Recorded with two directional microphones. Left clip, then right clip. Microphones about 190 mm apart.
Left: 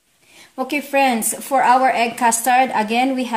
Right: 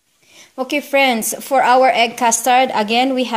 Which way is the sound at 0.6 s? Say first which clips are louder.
Right 2 dB; 30° right (ahead or behind).